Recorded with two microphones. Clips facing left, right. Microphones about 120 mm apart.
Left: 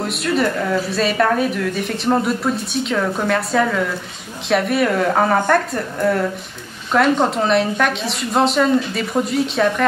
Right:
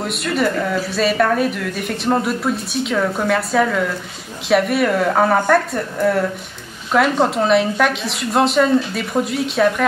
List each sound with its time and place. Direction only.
0.0 s speech: centre (ahead or behind)